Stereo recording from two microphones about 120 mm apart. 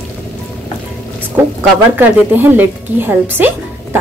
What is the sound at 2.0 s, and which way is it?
A woman's voice, 15° right (ahead or behind).